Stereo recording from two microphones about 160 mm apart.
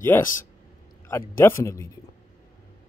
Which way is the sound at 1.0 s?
15° left (ahead or behind).